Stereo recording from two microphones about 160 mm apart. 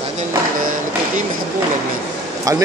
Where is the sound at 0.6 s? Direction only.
55° right (ahead or behind).